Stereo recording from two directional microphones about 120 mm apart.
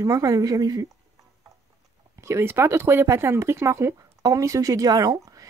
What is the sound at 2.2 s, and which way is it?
Speech, 20° right (ahead or behind).